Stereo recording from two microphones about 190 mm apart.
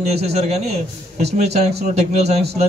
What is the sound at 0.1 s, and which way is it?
Speech, 35° right (ahead or behind).